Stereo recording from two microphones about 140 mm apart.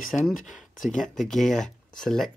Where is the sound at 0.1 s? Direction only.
5° left (ahead or behind).